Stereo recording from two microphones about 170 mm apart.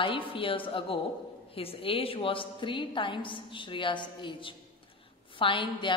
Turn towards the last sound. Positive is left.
turn(degrees=30)  # may be behind; listen again after turning